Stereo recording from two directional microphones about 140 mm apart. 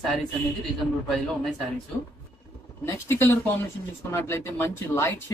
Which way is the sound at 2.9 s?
15° left (ahead or behind).